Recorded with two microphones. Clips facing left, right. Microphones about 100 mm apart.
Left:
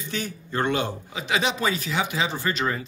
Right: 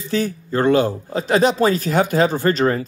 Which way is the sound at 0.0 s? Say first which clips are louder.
Right 10 dB; 35° right (ahead or behind).